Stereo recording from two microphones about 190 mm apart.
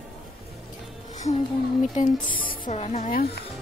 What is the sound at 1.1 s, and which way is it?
Music, 40° left (ahead or behind).